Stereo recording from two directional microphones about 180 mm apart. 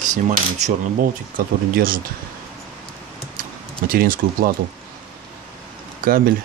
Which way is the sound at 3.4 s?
55° right (ahead or behind).